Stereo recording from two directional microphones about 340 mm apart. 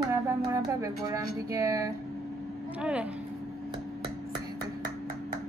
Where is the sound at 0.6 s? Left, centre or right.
Centre.